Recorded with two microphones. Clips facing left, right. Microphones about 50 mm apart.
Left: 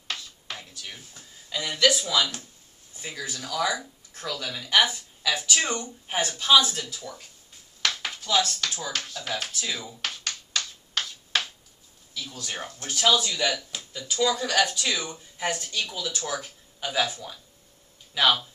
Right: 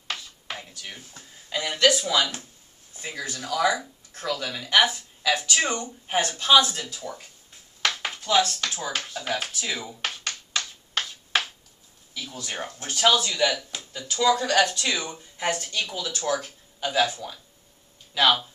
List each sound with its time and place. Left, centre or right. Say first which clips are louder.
0.1 s speech: right 2 dB; centre
4.1 s speech: right 3 dB; centre
6.8 s speech: right 2 dB; centre
9.8 s a sound: right 2 dB; centre
12.1 s speech: right 1 dB; centre
15.0 s speech: right 2 dB; centre
16.2 s speech: right 5 dB; centre